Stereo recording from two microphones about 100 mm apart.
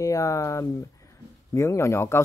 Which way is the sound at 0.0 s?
35° left (ahead or behind).